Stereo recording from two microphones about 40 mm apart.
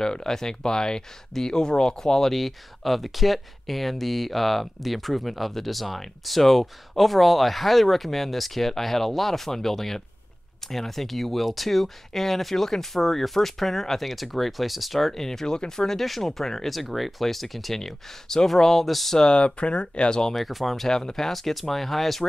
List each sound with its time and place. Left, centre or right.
0.0 s speech: centre
19.1 s speech: left
20.3 s speech: centre